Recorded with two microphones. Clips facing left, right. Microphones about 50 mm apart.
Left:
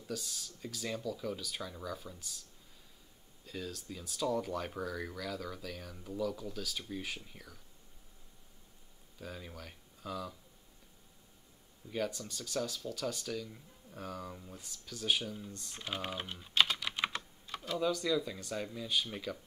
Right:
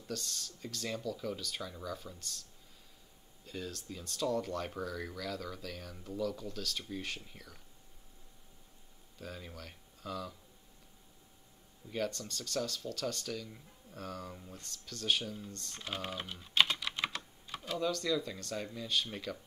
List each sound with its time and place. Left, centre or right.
0.0 s speech: centre
3.4 s speech: centre
9.2 s speech: centre
11.9 s speech: centre
16.3 s typing: centre
16.8 s typing: left
17.5 s speech: centre